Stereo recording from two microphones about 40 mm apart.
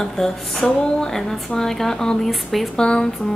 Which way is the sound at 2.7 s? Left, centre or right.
Left.